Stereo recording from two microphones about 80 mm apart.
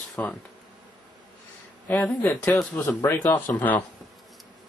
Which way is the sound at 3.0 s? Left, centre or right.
Left.